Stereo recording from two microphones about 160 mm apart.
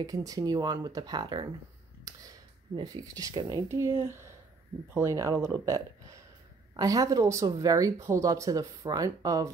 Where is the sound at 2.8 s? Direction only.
25° right (ahead or behind).